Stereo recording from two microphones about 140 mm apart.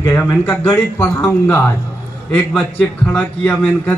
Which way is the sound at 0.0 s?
20° left (ahead or behind).